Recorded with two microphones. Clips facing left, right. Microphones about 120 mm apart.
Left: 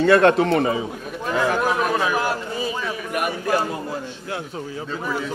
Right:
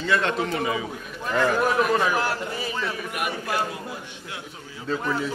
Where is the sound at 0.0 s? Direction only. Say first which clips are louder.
Left 9 dB; 55° left (ahead or behind).